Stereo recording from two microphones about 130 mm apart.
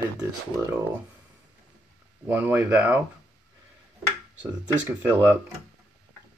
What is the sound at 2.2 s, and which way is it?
Speech, 15° right (ahead or behind).